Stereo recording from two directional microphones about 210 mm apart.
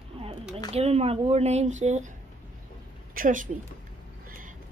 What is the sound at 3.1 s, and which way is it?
Speech, 40° right (ahead or behind).